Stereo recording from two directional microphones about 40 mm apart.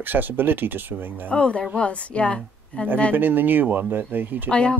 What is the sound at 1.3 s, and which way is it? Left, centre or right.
A woman's voice, left.